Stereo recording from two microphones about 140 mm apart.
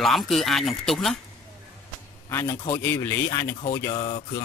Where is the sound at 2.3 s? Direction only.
20° left (ahead or behind).